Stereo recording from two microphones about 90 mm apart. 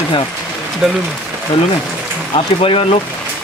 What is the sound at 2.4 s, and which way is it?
Speech, 90° left.